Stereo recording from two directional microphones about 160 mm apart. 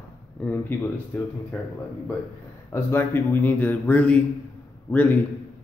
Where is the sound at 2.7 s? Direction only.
15° left (ahead or behind).